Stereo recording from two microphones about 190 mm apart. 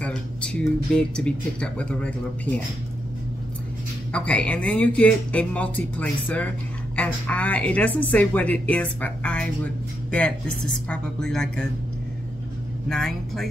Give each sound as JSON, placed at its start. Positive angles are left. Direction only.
{"t": 0.0, "sound": "speech", "side_deg": 5}
{"t": 4.1, "sound": "speech", "side_deg": 5}
{"t": 10.9, "sound": "speech", "side_deg": 5}
{"t": 12.8, "sound": "speech", "side_deg": 5}